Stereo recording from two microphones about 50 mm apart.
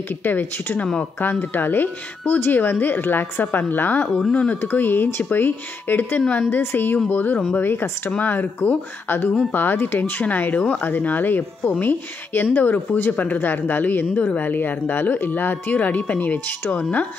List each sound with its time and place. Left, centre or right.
0.2 s speech: left
4.3 s speech: left
4.6 s speech: left
7.1 s speech: left
7.5 s speech: left
10.2 s speech: left